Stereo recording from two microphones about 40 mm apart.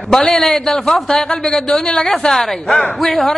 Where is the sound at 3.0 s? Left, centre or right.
Centre.